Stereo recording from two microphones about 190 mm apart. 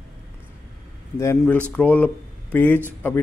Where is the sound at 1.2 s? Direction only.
10° left (ahead or behind).